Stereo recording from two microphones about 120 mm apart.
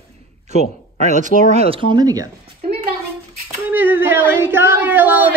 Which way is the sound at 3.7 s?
15° right (ahead or behind).